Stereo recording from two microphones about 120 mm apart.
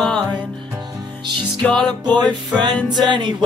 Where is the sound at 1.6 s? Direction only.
5° left (ahead or behind).